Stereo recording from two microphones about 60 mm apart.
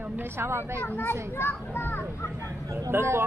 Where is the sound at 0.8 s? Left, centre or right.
Left.